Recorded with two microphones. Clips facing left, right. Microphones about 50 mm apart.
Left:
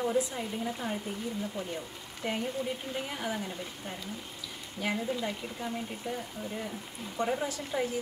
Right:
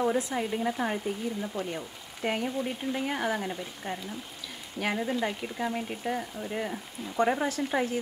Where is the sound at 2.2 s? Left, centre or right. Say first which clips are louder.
Right 4 dB; right.